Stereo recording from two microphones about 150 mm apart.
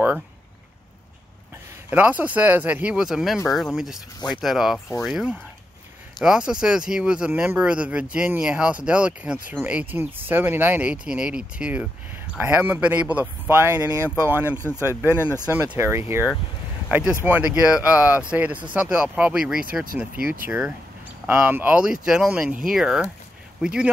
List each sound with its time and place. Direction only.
1.9 s speech: 10° right (ahead or behind)
4.7 s speech: 15° left (ahead or behind)
5.0 s speech: centre (ahead or behind)
14.6 s speech: 15° left (ahead or behind)
15.5 s speech: 15° right (ahead or behind)